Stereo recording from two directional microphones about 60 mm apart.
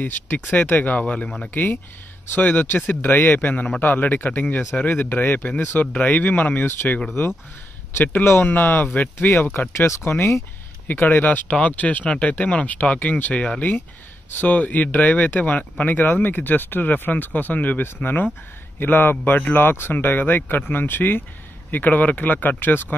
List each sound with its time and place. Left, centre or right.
0.4 s speech: left
1.5 s speech: left
6.6 s speech: left
9.8 s speech: left
11.0 s speech: left